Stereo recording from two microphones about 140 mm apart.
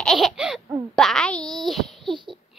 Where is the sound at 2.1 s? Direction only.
35° right (ahead or behind).